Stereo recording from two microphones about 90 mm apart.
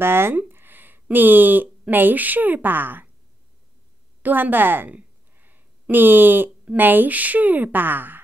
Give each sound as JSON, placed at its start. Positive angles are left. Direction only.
{"t": 0.0, "sound": "speech", "side_deg": -25}
{"t": 4.2, "sound": "a woman's voice", "side_deg": -20}